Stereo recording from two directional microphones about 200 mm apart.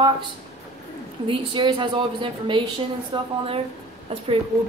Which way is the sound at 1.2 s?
25° right (ahead or behind).